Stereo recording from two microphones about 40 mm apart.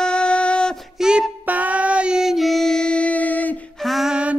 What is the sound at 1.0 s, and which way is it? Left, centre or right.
Child singing, centre.